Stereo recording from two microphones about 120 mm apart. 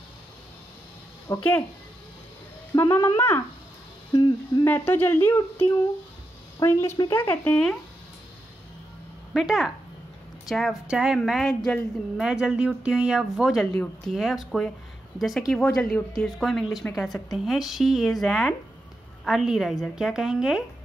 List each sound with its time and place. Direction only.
1.3 s a woman's voice: 30° left (ahead or behind)
2.7 s a woman's voice: 20° left (ahead or behind)
4.1 s speech: 35° left (ahead or behind)
4.6 s a woman's voice: 15° left (ahead or behind)
9.3 s speech: 5° right (ahead or behind)